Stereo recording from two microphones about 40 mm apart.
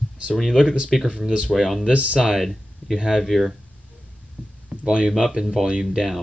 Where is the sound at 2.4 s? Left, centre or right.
Centre.